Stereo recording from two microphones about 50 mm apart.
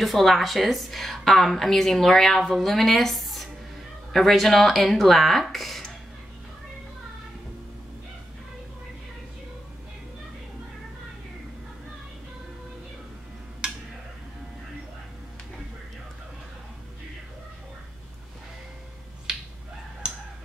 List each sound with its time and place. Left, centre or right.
0.0 s a woman's voice: centre